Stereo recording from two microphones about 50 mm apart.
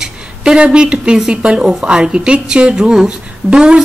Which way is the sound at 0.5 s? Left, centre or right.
Right.